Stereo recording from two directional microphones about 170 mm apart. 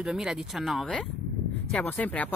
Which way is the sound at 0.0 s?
5° right (ahead or behind).